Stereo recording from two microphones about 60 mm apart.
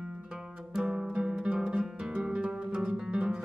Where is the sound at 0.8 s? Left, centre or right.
Centre.